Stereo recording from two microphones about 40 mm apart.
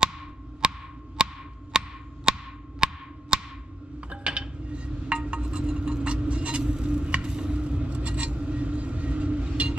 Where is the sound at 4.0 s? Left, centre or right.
Right.